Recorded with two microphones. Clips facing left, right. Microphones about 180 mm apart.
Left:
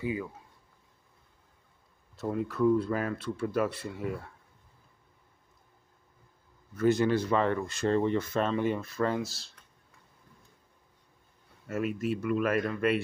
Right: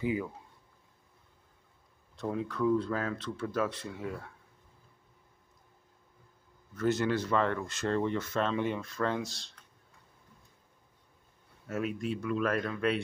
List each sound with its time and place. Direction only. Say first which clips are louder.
0.0 s speech: right 1 dB; 20° right (ahead or behind)
2.1 s speech: left 3 dB; 5° left (ahead or behind)
6.7 s speech: left 4 dB; 10° left (ahead or behind)
11.6 s speech: left 3 dB; centre (ahead or behind)